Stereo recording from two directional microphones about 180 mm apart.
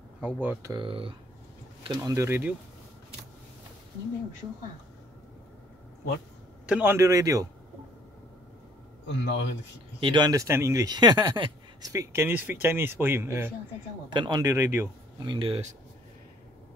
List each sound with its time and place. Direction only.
0.2 s speech: 10° right (ahead or behind)
0.8 s speech: 30° right (ahead or behind)
1.8 s speech: 20° right (ahead or behind)
6.6 s speech: 10° right (ahead or behind)
9.0 s speech: 75° left (ahead or behind)
9.9 s speech: 25° right (ahead or behind)
14.1 s speech: 25° right (ahead or behind)
15.2 s speech: 30° right (ahead or behind)